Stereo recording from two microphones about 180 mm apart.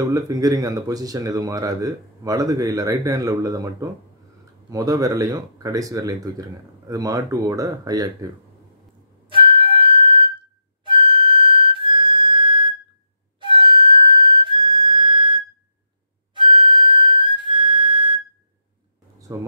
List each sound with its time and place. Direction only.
0.0 s speech: 20° right (ahead or behind)
9.3 s music: 30° right (ahead or behind)
10.8 s flute: 30° right (ahead or behind)
16.3 s flute: 25° right (ahead or behind)
19.3 s a sound: 20° right (ahead or behind)